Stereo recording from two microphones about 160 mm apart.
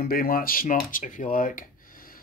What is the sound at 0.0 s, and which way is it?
Speech, 65° left (ahead or behind).